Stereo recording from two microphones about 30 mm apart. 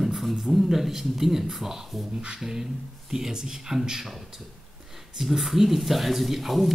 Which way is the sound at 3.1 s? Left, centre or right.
Centre.